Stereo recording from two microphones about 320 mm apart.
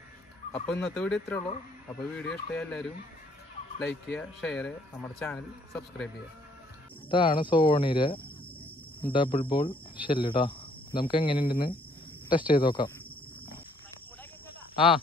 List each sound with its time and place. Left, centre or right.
0.7 s speech: centre
7.1 s speech: centre